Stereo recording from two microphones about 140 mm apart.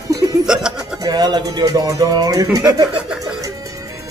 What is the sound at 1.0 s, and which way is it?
Speech, 30° right (ahead or behind).